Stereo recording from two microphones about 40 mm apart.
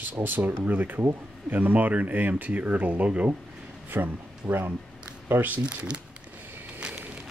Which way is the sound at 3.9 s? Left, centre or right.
Right.